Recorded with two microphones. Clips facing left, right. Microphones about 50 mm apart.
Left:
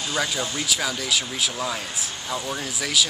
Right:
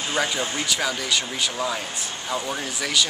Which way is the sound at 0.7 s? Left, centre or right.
Centre.